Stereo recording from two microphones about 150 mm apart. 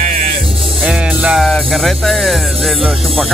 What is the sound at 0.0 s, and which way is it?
Music, 60° right (ahead or behind).